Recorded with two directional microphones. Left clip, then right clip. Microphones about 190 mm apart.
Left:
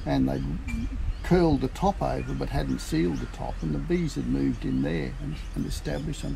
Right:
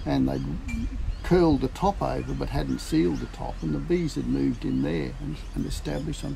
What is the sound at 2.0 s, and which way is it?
Speech, 25° right (ahead or behind).